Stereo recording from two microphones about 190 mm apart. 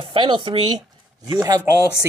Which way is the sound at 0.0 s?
25° right (ahead or behind).